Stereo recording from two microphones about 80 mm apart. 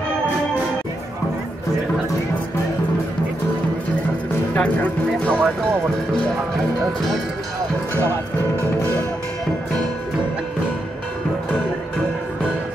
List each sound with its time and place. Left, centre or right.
4.6 s music: centre